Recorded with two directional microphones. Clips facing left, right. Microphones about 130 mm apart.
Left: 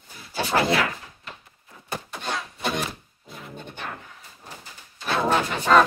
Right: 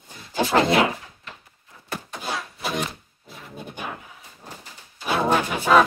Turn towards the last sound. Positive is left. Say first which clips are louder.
# right 1 dB
turn(degrees=-10)  # may be behind; listen again after turning